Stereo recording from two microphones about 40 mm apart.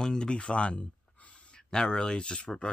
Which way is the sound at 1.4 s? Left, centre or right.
Left.